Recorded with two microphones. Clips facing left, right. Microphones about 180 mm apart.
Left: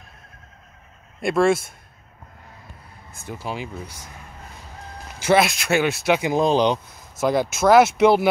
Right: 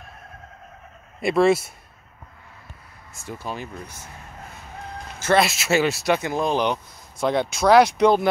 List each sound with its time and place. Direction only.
1.2 s speech: centre (ahead or behind)
3.2 s speech: 5° left (ahead or behind)
5.2 s speech: 5° left (ahead or behind)
6.2 s speech: 20° left (ahead or behind)
7.2 s speech: 5° left (ahead or behind)